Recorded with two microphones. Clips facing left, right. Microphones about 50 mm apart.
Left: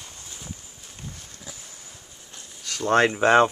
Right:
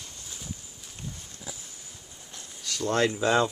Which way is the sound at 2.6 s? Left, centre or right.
Left.